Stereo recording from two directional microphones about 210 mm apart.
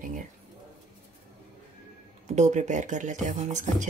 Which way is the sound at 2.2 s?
35° right (ahead or behind).